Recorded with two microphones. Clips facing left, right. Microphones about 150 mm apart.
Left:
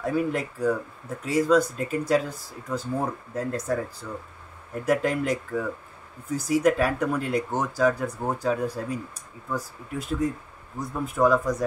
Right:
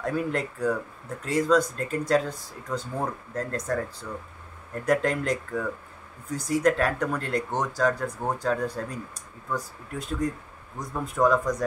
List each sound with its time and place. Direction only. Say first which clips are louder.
0.0 s speech: left 2 dB; 5° left (ahead or behind)